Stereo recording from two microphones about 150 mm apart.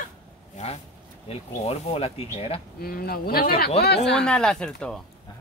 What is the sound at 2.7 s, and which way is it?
Speech, 90° left.